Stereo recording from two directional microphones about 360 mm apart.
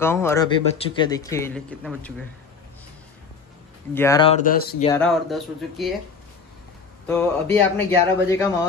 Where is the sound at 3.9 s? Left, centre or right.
Centre; by 4.9 s left.